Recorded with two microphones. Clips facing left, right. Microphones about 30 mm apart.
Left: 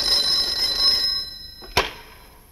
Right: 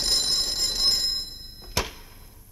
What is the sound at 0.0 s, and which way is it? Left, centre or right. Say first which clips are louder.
Telephone bell ringing: left 4 dB; left.